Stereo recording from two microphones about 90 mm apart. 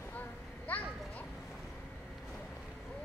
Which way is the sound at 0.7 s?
15° left (ahead or behind).